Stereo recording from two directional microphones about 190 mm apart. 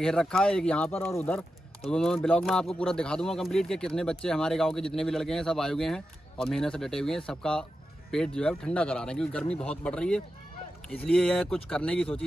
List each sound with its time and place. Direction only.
0.0 s speech: 5° left (ahead or behind)